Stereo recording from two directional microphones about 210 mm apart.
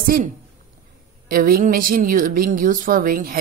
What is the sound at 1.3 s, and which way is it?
A woman's voice, 45° right (ahead or behind).